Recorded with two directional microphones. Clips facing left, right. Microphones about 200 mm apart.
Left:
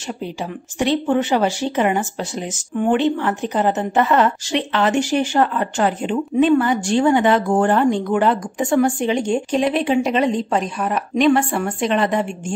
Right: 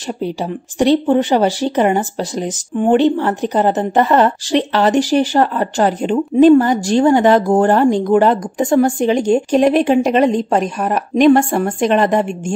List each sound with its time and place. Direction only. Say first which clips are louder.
0.4 s a woman's voice: right 5 dB; 35° right (ahead or behind)